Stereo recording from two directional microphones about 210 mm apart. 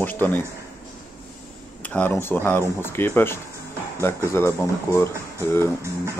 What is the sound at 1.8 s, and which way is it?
Speech, 5° left (ahead or behind).